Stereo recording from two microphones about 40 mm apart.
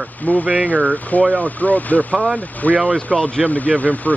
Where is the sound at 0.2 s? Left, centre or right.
Left.